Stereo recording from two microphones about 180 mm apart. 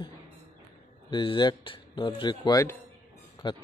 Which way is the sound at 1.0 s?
25° left (ahead or behind).